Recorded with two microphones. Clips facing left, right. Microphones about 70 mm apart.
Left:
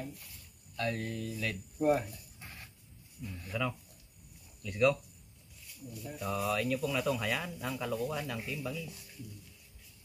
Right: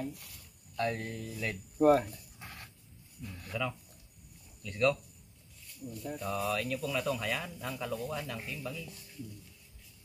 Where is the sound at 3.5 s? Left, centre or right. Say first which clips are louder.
Left 1 dB; centre.